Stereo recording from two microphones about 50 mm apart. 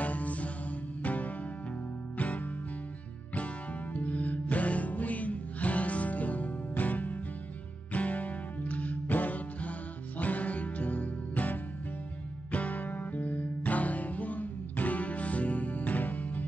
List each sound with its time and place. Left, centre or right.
0.0 s mantra: left
1.0 s music: left
3.9 s music: left